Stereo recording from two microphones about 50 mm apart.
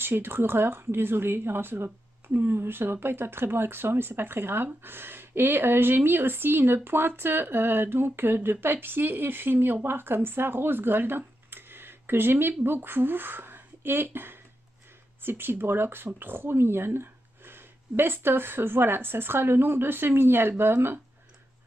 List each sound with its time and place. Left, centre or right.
0.0 s a woman's voice: right